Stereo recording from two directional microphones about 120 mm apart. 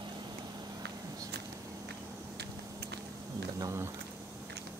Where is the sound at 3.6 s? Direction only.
25° right (ahead or behind).